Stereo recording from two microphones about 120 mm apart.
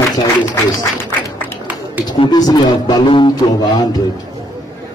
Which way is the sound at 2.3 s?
35° left (ahead or behind).